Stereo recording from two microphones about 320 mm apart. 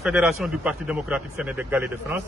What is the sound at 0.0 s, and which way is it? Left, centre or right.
A man's voice, centre.